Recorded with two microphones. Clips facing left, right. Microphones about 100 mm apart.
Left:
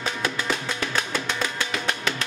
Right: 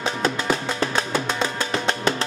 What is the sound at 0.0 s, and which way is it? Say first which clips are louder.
Music: right 4 dB; 30° right (ahead or behind).